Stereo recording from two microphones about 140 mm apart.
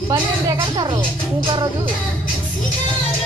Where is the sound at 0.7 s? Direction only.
30° right (ahead or behind).